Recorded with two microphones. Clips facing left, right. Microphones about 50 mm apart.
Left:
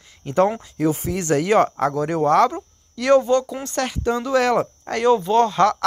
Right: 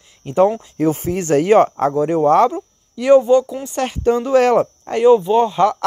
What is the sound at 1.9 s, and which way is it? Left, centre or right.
Speech, centre.